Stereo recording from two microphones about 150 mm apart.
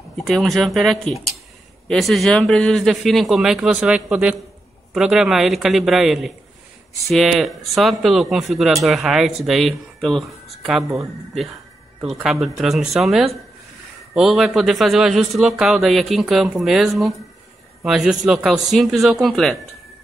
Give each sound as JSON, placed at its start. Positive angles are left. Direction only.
{"t": 0.2, "sound": "speech", "side_deg": 0}
{"t": 10.8, "sound": "speech", "side_deg": -20}
{"t": 12.0, "sound": "speech", "side_deg": -5}